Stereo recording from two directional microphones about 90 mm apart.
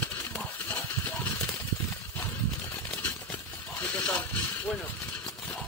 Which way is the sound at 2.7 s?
25° left (ahead or behind).